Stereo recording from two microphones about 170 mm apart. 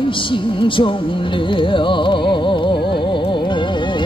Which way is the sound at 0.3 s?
30° left (ahead or behind).